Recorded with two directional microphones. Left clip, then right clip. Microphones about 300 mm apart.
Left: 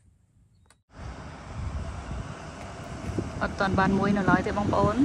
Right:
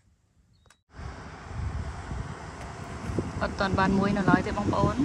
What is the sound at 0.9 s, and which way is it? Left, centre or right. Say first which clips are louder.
Vehicle: even; left.